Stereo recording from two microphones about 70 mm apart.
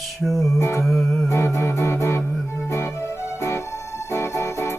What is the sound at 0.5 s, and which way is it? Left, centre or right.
Music, left.